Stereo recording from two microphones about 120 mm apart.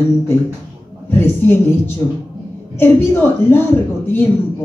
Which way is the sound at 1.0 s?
20° left (ahead or behind).